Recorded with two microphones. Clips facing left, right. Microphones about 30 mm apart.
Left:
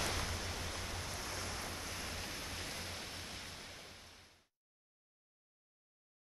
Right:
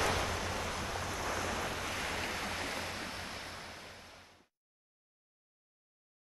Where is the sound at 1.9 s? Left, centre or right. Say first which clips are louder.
Right 7 dB; right.